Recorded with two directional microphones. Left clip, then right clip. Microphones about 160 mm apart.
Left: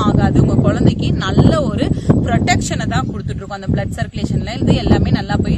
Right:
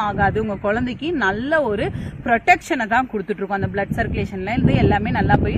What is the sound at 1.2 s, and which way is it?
Speech, 25° left (ahead or behind).